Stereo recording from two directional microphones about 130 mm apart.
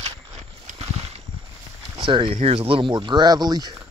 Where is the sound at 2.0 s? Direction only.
40° right (ahead or behind).